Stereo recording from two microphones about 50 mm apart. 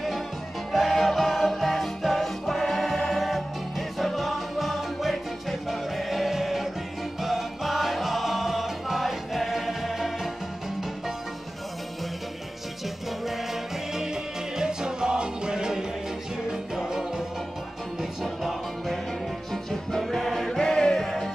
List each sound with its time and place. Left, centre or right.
0.7 s music: centre
13.2 s music: centre
18.2 s music: centre